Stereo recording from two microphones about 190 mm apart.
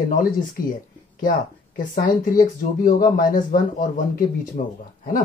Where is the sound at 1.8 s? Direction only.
45° left (ahead or behind).